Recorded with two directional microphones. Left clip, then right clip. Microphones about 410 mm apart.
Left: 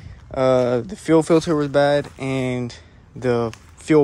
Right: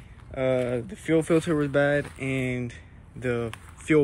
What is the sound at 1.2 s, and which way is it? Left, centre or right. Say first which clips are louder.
Speech: left 6 dB; centre.